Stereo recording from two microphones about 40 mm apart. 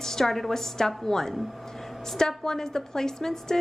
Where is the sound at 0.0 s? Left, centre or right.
Centre.